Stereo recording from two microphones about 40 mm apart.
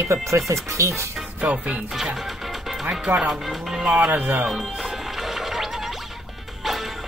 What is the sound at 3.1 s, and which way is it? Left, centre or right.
Speech, right.